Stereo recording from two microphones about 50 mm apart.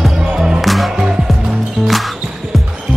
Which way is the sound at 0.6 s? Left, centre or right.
Centre.